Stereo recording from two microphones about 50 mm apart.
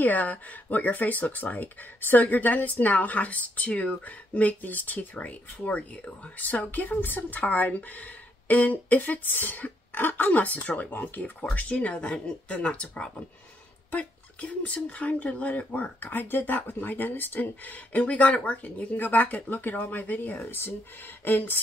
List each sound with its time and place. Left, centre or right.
0.0 s speech: left